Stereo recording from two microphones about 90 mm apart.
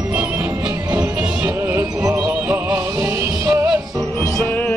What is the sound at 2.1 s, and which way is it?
Music, 15° right (ahead or behind).